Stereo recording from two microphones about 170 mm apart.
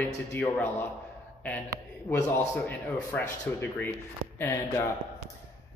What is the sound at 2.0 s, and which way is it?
A man's voice, 10° left (ahead or behind).